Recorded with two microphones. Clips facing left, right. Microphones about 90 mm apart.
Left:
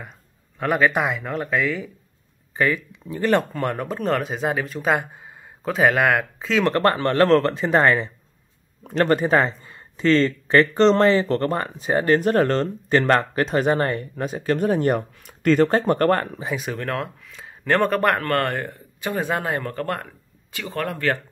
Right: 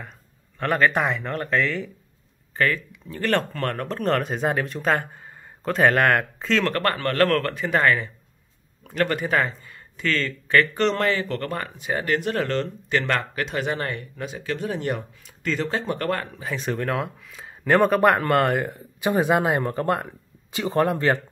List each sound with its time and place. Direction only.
0.6 s a man's voice: 10° left (ahead or behind)
6.6 s speech: 25° left (ahead or behind); by 16.3 s 45° left (ahead or behind)
16.5 s speech: centre (ahead or behind); by 21.2 s 20° right (ahead or behind)